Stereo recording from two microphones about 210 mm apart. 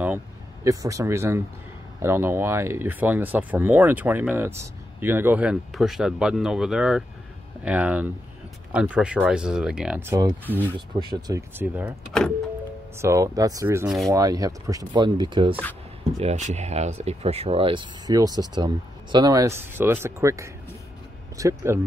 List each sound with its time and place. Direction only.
0.7 s speech: 15° right (ahead or behind)
13.0 s speech: 15° right (ahead or behind)